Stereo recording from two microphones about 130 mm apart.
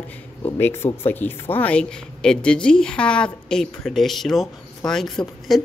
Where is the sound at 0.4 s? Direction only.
15° left (ahead or behind).